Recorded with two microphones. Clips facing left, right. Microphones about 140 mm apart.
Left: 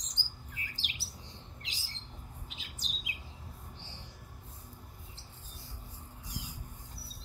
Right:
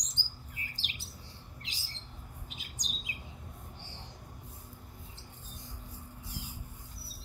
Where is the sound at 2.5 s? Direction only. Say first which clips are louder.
Right 1 dB; 45° right (ahead or behind).